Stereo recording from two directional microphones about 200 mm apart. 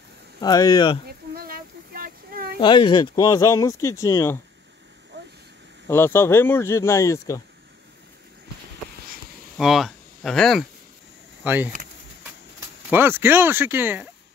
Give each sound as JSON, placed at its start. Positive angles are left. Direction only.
{"t": 0.4, "sound": "speech", "side_deg": 20}
{"t": 1.0, "sound": "a sound", "side_deg": -50}
{"t": 2.6, "sound": "speech", "side_deg": 25}
{"t": 5.1, "sound": "vehicle", "side_deg": -60}
{"t": 5.9, "sound": "speech", "side_deg": 10}
{"t": 9.6, "sound": "speech", "side_deg": 0}
{"t": 11.4, "sound": "speech", "side_deg": -10}